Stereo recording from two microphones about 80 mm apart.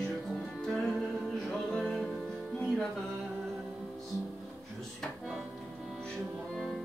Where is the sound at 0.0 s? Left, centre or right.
Centre.